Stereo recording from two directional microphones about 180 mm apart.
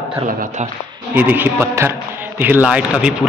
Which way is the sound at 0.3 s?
50° right (ahead or behind).